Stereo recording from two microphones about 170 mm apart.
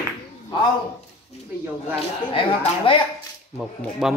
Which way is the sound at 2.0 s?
30° left (ahead or behind).